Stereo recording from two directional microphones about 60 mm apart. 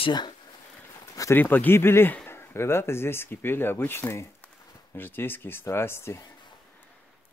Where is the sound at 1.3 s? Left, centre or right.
Left.